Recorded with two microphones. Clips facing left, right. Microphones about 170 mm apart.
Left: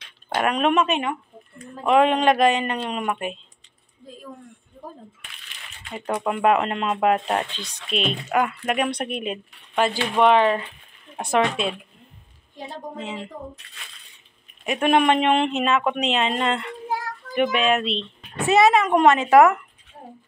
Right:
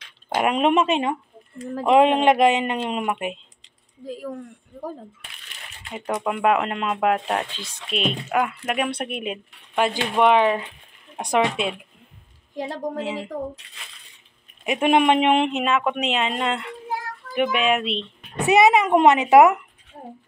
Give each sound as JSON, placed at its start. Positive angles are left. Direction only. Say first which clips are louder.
{"t": 0.3, "sound": "speech", "louder": "right 1 dB", "side_deg": -20}
{"t": 4.0, "sound": "speech", "louder": "right 10 dB", "side_deg": -90}
{"t": 5.9, "sound": "speech", "louder": "even", "side_deg": -5}
{"t": 12.5, "sound": "a woman's voice", "louder": "right 7 dB", "side_deg": -85}
{"t": 13.0, "sound": "speech", "louder": "right 4 dB", "side_deg": -10}
{"t": 14.6, "sound": "speech", "louder": "right 1 dB", "side_deg": -15}